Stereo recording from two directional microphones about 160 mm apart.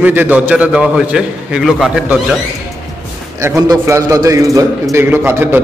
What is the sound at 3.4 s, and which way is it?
A man's voice, 20° right (ahead or behind).